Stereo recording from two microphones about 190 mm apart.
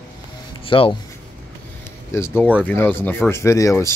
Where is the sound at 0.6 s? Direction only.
30° left (ahead or behind).